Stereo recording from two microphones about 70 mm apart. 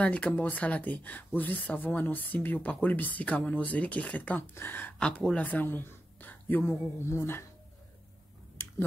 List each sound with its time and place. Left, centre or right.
0.0 s speech: centre
4.9 s speech: centre
5.5 s speech: left